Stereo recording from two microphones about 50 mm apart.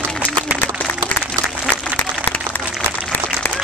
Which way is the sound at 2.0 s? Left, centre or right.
Left.